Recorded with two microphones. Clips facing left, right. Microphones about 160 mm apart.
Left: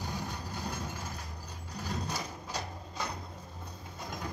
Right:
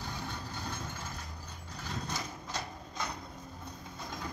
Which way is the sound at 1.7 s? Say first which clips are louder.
Left 3 dB; 40° left (ahead or behind).